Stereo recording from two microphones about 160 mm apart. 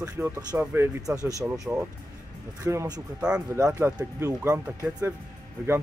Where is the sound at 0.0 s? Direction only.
20° right (ahead or behind).